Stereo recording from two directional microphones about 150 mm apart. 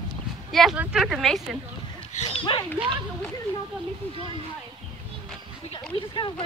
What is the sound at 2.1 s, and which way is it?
Speech, 45° left (ahead or behind).